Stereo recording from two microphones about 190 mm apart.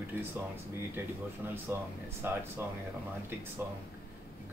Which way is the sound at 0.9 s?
10° right (ahead or behind).